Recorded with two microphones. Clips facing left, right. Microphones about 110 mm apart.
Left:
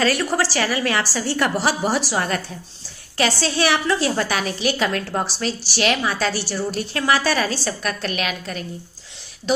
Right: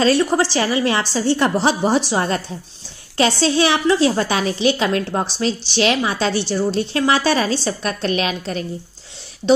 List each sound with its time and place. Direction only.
0.0 s a woman's voice: 20° right (ahead or behind)